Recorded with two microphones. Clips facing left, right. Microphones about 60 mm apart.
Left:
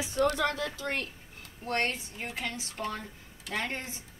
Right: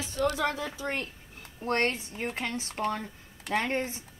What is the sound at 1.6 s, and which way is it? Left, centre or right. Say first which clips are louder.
Speech: right 3 dB; right.